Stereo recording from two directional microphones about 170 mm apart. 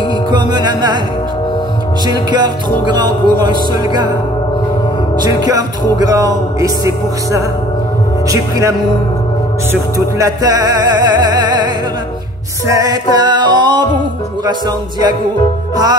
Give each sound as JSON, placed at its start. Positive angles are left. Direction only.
{"t": 0.3, "sound": "music", "side_deg": -25}
{"t": 2.0, "sound": "music", "side_deg": -25}
{"t": 5.1, "sound": "music", "side_deg": -25}